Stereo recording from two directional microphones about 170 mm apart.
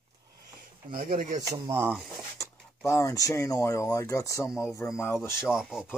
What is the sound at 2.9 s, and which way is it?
Speech, 15° left (ahead or behind).